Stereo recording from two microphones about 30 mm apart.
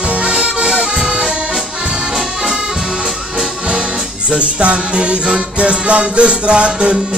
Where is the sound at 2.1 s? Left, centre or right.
Centre.